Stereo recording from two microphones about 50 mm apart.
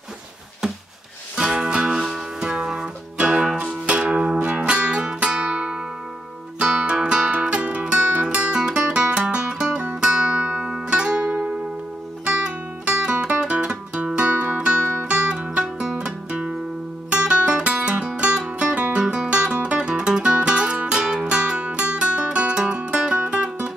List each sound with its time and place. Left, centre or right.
1.3 s music: centre
2.4 s music: centre